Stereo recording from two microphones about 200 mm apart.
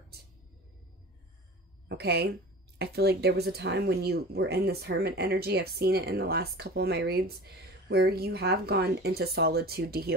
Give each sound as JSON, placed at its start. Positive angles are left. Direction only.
{"t": 1.9, "sound": "a woman's voice", "side_deg": -55}